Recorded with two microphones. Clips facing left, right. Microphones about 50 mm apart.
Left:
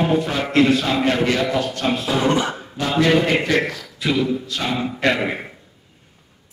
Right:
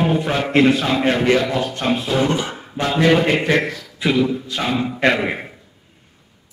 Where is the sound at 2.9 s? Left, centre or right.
Right.